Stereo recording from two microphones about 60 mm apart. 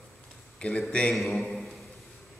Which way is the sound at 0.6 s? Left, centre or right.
Centre.